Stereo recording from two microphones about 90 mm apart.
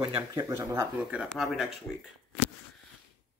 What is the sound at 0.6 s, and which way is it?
Speech, 30° right (ahead or behind).